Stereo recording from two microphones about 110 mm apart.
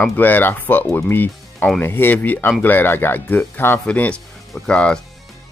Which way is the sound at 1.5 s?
5° left (ahead or behind).